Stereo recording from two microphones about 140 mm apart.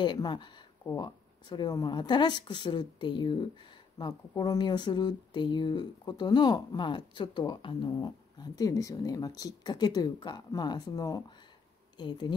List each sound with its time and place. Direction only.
0.0 s speech: 30° left (ahead or behind)